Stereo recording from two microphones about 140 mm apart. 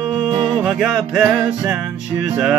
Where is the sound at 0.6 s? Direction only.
Centre (ahead or behind).